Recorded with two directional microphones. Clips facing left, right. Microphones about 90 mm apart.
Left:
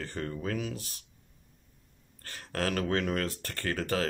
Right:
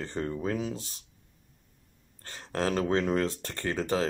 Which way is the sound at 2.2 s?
20° right (ahead or behind).